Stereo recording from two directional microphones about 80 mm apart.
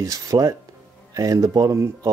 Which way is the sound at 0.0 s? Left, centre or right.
Right.